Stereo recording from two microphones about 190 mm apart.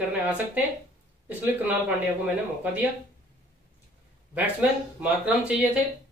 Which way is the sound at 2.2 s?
10° right (ahead or behind).